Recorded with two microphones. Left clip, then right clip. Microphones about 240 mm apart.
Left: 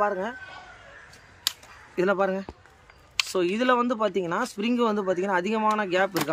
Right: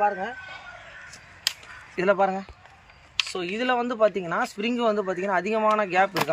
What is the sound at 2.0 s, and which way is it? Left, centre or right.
A man's voice, centre.